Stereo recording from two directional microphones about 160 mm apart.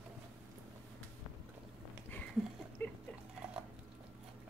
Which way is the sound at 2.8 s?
10° left (ahead or behind).